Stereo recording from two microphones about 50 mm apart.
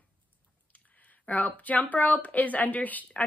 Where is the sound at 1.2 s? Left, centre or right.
Left.